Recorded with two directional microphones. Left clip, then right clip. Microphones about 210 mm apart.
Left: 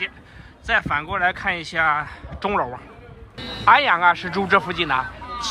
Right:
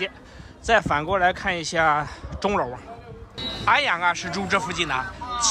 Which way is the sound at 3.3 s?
40° right (ahead or behind).